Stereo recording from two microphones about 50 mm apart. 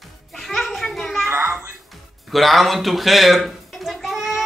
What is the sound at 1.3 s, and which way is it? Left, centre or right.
Music, right.